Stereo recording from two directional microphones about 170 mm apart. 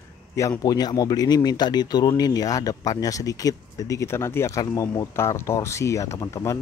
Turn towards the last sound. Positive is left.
turn(degrees=20)  # may be behind; listen again after turning